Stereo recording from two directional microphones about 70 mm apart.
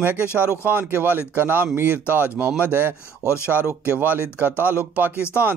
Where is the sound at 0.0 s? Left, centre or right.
Right.